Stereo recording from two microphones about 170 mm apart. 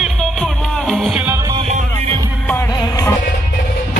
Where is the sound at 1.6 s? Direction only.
40° right (ahead or behind).